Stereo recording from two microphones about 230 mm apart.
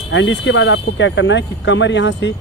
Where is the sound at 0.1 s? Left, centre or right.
Left.